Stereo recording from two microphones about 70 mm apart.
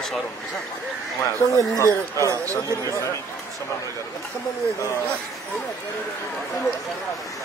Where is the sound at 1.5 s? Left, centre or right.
Left.